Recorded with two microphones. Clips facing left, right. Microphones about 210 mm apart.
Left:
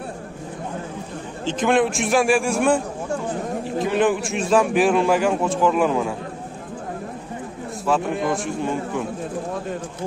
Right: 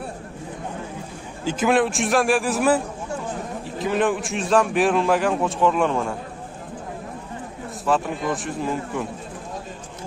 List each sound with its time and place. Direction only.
1.4 s a man's voice: 5° right (ahead or behind)
7.8 s a man's voice: centre (ahead or behind)